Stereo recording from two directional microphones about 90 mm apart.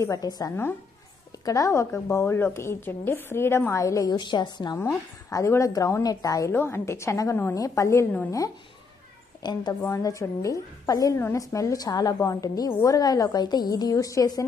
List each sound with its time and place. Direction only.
0.0 s a woman's voice: 40° left (ahead or behind)
4.1 s a woman's voice: 55° left (ahead or behind)
5.3 s a woman's voice: 35° left (ahead or behind)
6.5 s a woman's voice: 25° left (ahead or behind)
9.4 s a woman's voice: 50° left (ahead or behind)